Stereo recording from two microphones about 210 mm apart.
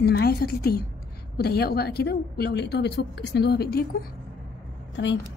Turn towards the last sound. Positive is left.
turn(degrees=55)  # may be behind; listen again after turning